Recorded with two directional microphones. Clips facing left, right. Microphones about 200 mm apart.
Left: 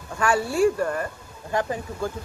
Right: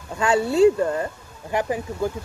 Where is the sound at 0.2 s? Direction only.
20° right (ahead or behind).